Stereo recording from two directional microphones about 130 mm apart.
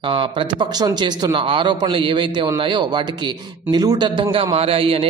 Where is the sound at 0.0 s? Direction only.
40° right (ahead or behind).